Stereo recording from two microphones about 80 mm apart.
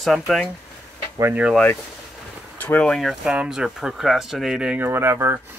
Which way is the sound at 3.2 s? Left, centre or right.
Centre.